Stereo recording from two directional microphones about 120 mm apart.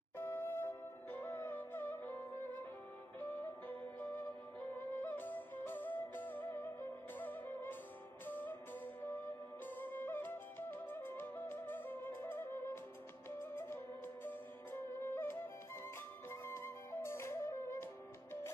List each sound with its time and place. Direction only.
0.2 s music: 15° left (ahead or behind)
9.8 s music: 15° left (ahead or behind)